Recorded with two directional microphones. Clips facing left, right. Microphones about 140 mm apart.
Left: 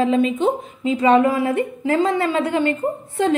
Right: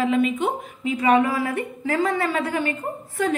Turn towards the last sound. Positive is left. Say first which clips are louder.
# left 5 dB
turn(degrees=25)  # may be behind; listen again after turning